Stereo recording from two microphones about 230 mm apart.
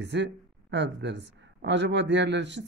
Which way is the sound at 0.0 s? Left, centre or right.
Right.